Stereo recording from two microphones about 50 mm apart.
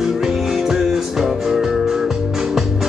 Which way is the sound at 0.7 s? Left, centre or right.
Centre.